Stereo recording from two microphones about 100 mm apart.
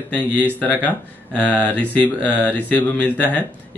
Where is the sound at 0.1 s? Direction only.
15° left (ahead or behind).